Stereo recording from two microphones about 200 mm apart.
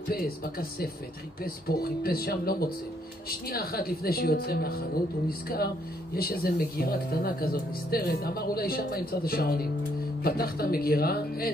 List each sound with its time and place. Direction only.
0.1 s speech: 50° left (ahead or behind)
6.1 s speech: 50° left (ahead or behind)